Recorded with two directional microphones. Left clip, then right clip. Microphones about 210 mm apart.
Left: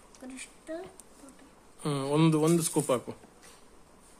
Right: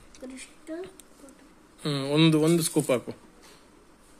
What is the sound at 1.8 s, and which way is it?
Speech, 5° left (ahead or behind).